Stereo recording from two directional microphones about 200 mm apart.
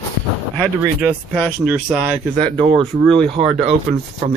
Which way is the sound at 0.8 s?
10° right (ahead or behind).